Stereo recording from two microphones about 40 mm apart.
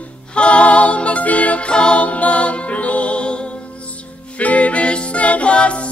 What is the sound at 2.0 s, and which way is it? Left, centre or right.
Music, left.